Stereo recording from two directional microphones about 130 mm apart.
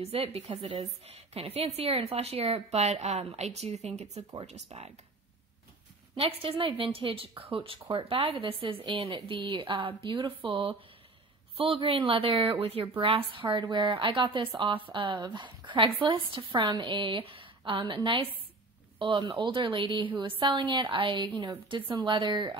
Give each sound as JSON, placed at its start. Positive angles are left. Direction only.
{"t": 0.0, "sound": "a woman's voice", "side_deg": -50}
{"t": 6.1, "sound": "a woman's voice", "side_deg": -45}